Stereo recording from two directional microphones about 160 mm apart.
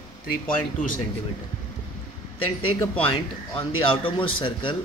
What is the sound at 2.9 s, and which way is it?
Speech, 35° left (ahead or behind).